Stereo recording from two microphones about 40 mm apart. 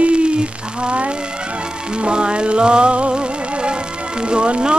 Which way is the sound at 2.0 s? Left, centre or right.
Right.